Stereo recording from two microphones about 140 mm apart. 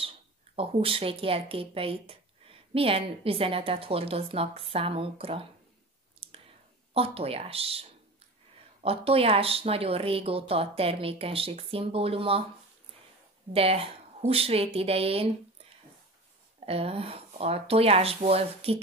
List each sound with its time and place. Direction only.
0.6 s speech: 40° right (ahead or behind)
6.1 s clicking: 40° right (ahead or behind)
6.9 s speech: 45° right (ahead or behind)
13.5 s speech: 45° right (ahead or behind)
16.5 s speech: 45° right (ahead or behind)